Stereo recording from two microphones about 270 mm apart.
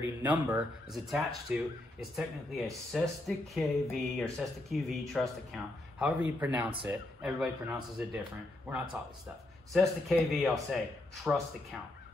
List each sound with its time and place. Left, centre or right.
0.0 s speech: centre
6.5 s speech: centre
9.7 s speech: centre